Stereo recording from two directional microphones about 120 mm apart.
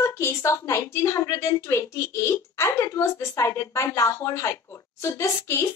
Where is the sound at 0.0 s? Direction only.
25° left (ahead or behind).